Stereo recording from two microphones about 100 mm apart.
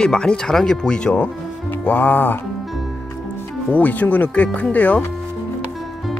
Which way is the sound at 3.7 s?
15° left (ahead or behind).